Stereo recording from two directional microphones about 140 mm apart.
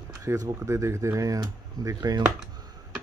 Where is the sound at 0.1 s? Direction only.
20° right (ahead or behind).